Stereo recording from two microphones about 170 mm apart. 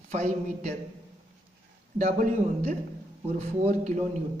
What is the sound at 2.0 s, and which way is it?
Speech, 50° right (ahead or behind).